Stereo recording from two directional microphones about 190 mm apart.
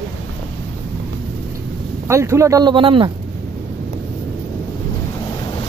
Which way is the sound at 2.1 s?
15° right (ahead or behind).